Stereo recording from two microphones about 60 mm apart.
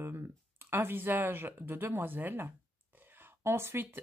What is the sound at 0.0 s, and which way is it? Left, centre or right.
Speech, right.